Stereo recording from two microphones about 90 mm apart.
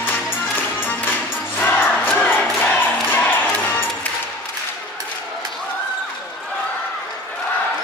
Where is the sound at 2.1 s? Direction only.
15° left (ahead or behind).